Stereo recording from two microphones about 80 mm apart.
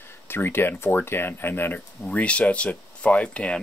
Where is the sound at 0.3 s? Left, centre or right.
Left.